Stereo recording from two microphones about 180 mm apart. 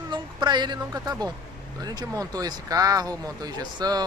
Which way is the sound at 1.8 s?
20° right (ahead or behind).